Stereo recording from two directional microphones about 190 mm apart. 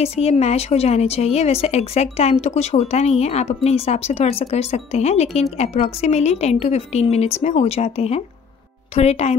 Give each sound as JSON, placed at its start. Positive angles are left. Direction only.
{"t": 0.0, "sound": "speech", "side_deg": 35}